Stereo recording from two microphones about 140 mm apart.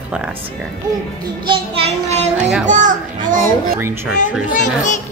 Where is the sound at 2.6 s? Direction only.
60° right (ahead or behind).